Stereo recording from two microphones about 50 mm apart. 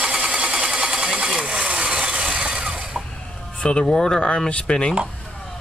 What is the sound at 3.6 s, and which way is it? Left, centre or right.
Speech, centre.